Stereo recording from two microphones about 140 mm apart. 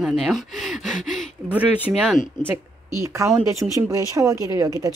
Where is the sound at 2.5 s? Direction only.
20° right (ahead or behind).